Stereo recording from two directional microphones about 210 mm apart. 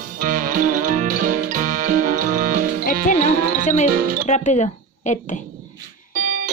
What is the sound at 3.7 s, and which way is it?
Music, 35° left (ahead or behind).